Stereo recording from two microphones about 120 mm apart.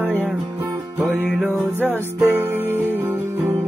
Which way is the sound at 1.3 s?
Centre (ahead or behind).